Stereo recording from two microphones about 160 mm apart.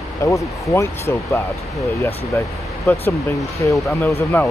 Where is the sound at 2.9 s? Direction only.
10° left (ahead or behind).